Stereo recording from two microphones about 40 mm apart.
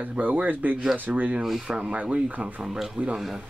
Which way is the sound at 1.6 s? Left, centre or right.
Right.